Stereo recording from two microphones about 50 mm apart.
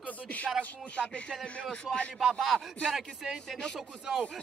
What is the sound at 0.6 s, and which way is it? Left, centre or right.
Speech, left.